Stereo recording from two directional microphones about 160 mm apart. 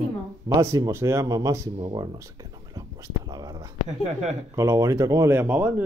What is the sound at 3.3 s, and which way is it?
Speech, 25° right (ahead or behind).